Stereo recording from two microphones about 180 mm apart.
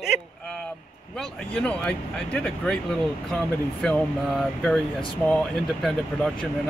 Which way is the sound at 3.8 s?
5° left (ahead or behind).